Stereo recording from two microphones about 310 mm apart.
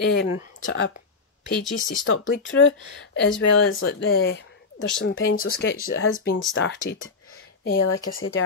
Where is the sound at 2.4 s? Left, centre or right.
Left.